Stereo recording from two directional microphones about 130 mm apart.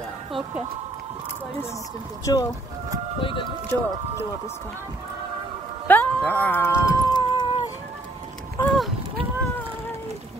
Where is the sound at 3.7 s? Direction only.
15° left (ahead or behind).